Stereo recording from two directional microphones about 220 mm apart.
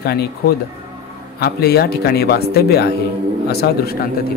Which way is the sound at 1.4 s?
45° left (ahead or behind).